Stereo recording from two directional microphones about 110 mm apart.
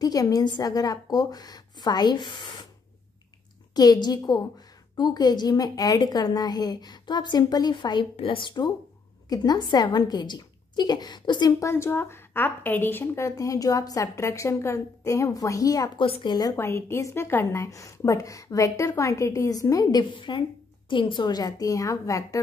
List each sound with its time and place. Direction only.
0.0 s a woman's voice: 35° left (ahead or behind)
3.7 s a woman's voice: 35° left (ahead or behind)
8.2 s speech: 55° left (ahead or behind)
9.3 s a woman's voice: 35° left (ahead or behind)
11.6 s a woman's voice: 25° left (ahead or behind)
16.0 s speech: 50° left (ahead or behind)
16.5 s a woman's voice: 25° left (ahead or behind)